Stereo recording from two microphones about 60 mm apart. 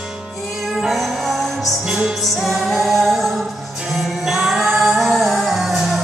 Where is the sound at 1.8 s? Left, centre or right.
Centre.